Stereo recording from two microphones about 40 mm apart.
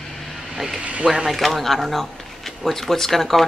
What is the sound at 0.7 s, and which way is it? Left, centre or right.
Speech, right.